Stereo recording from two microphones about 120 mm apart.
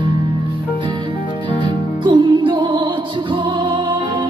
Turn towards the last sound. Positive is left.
turn(degrees=-40)  # may be behind; listen again after turning